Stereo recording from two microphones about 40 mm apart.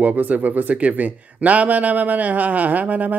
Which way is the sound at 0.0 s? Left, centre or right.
Right.